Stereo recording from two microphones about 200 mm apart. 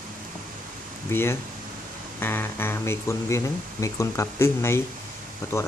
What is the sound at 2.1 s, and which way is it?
Speech, 10° left (ahead or behind).